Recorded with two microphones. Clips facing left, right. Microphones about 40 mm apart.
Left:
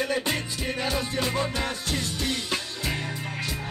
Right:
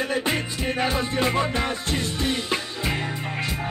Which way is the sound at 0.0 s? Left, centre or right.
Right.